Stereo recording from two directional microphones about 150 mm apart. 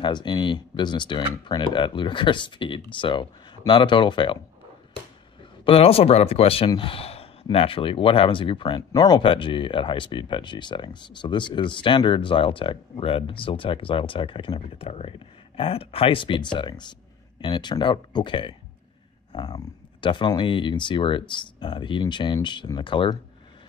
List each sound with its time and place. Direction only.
0.0 s speech: 30° left (ahead or behind)
5.7 s speech: 40° left (ahead or behind)